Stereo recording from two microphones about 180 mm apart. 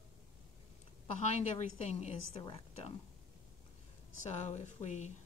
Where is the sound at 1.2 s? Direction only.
40° left (ahead or behind).